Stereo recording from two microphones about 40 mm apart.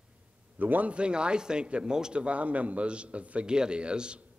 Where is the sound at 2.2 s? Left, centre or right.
Right.